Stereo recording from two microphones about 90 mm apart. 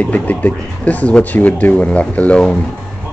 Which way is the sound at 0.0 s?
15° left (ahead or behind).